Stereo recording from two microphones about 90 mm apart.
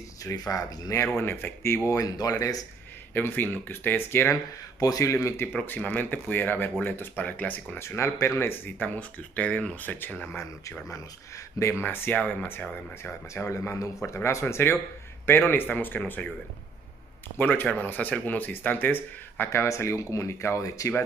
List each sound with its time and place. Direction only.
0.2 s speech: 40° left (ahead or behind)
1.9 s speech: 40° left (ahead or behind)
3.2 s speech: 20° left (ahead or behind)
4.7 s speech: 40° left (ahead or behind)
5.6 s speech: 20° left (ahead or behind)
17.4 s speech: 20° left (ahead or behind); by 20.9 s 35° left (ahead or behind)